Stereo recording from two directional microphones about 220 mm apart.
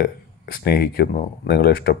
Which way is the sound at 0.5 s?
45° left (ahead or behind).